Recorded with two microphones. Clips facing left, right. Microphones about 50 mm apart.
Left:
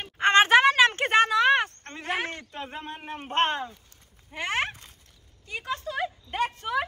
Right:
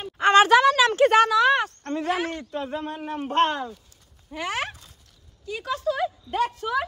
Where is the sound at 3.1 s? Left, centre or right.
Left.